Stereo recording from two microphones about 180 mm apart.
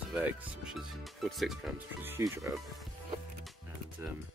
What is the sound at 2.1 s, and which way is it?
Speech, 15° right (ahead or behind).